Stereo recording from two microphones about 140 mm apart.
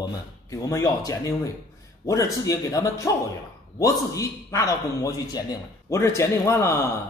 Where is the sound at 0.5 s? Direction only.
25° left (ahead or behind).